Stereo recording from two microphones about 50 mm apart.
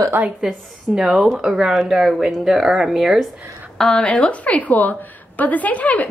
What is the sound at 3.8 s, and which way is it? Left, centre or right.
Speech, centre.